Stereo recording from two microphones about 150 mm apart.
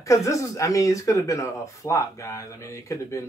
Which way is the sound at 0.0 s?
20° left (ahead or behind).